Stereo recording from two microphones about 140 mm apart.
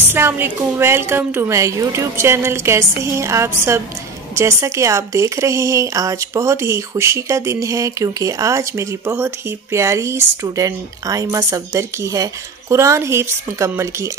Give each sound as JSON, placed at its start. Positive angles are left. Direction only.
{"t": 0.1, "sound": "a woman's voice", "side_deg": -15}